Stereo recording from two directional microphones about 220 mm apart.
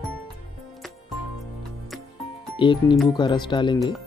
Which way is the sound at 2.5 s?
20° left (ahead or behind).